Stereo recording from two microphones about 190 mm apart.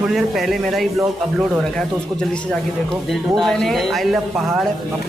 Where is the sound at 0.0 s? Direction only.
Centre (ahead or behind).